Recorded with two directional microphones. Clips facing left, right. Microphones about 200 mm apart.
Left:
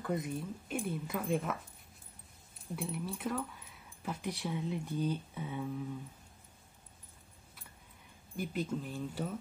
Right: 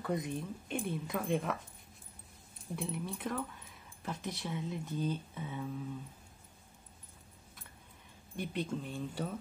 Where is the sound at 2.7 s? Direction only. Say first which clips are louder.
Even; centre (ahead or behind).